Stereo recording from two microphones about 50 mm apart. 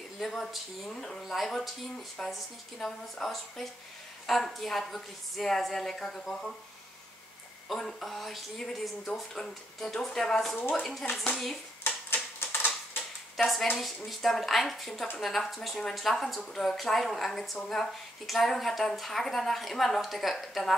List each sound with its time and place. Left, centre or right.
0.2 s a woman's voice: centre
7.6 s a woman's voice: centre
11.8 s typewriter: left
13.4 s a woman's voice: centre